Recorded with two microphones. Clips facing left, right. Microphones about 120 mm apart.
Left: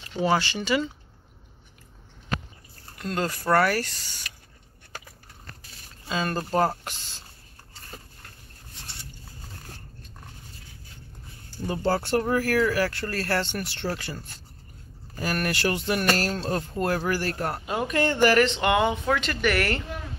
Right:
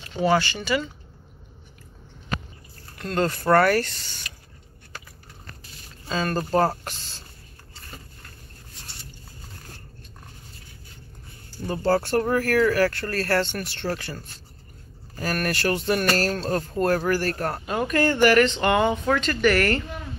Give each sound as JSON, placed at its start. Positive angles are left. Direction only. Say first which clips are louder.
{"t": 0.1, "sound": "speech", "louder": "right 2 dB", "side_deg": 20}
{"t": 3.0, "sound": "speech", "louder": "right 4 dB", "side_deg": 10}
{"t": 6.0, "sound": "speech", "louder": "right 2 dB", "side_deg": 10}
{"t": 11.7, "sound": "speech", "louder": "right 3 dB", "side_deg": 15}
{"t": 13.8, "sound": "speech", "louder": "right 3 dB", "side_deg": 5}
{"t": 15.2, "sound": "speech", "louder": "right 1 dB", "side_deg": 15}